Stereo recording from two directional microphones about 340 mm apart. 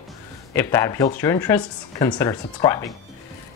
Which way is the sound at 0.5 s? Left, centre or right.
Centre.